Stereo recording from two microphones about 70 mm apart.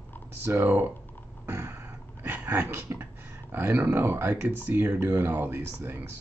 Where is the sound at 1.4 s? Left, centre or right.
Right.